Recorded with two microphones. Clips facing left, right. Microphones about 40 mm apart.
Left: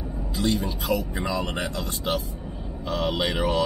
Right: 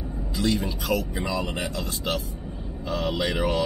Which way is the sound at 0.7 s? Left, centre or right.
Centre.